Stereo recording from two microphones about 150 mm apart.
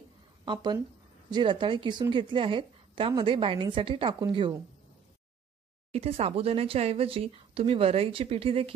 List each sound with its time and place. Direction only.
0.5 s a woman's voice: 30° right (ahead or behind)
5.9 s a woman's voice: 40° right (ahead or behind)